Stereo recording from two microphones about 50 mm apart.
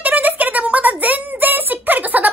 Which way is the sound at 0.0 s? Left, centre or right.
Right.